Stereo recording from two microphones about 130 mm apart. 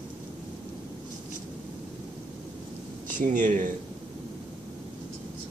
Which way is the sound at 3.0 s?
90° right.